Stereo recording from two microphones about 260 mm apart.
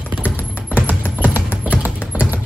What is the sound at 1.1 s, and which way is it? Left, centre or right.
Music, centre.